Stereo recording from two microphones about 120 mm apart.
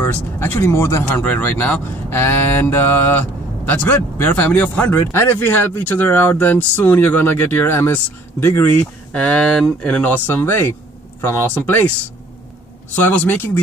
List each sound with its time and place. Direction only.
0.0 s speech: 20° left (ahead or behind)
13.0 s speech: 15° left (ahead or behind)